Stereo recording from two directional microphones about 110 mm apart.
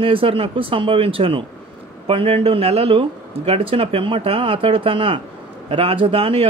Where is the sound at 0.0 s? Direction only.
55° right (ahead or behind).